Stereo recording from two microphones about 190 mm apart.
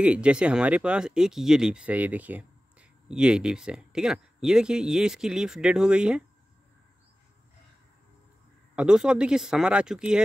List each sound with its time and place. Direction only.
0.0 s speech: 5° right (ahead or behind)
8.7 s speech: 5° right (ahead or behind)